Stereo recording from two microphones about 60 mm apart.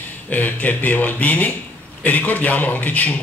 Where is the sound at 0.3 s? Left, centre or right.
Left.